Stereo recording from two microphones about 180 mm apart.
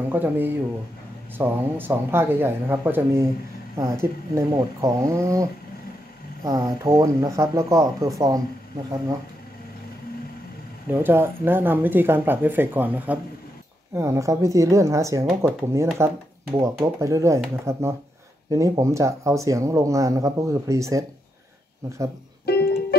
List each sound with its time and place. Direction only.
0.1 s speech: 10° right (ahead or behind)
10.9 s speech: 10° right (ahead or behind)
22.5 s music: 60° left (ahead or behind)